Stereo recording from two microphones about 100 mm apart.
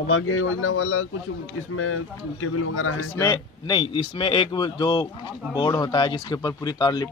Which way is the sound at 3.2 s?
40° left (ahead or behind).